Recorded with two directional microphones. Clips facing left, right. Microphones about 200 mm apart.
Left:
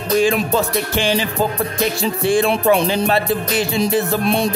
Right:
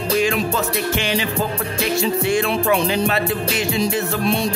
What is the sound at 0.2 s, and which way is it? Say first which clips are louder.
Speech: left 3 dB; 30° left (ahead or behind).